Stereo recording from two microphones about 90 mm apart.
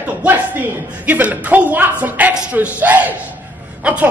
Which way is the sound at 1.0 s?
20° right (ahead or behind).